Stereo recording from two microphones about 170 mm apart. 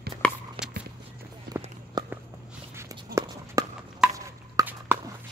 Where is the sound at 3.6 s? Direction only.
20° right (ahead or behind).